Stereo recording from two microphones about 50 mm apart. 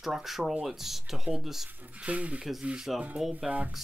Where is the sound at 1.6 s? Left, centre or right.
Right.